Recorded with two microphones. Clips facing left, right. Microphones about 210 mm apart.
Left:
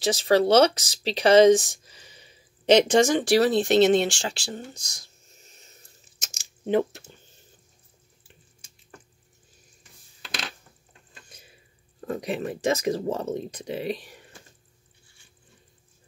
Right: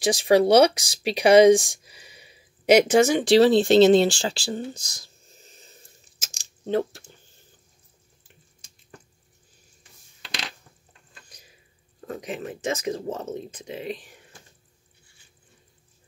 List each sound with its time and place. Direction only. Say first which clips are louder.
0.0 s speech: right 2 dB; 15° right (ahead or behind)
3.3 s speech: right 4 dB; 25° right (ahead or behind)
4.8 s a sound: right 2 dB; 35° right (ahead or behind)
6.1 s a sound: even; 5° right (ahead or behind)
6.6 s speech: left 2 dB; 20° left (ahead or behind)
12.1 s speech: left 4 dB; 35° left (ahead or behind)